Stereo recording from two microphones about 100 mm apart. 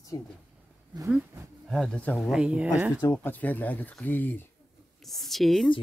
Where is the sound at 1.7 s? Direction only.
10° left (ahead or behind).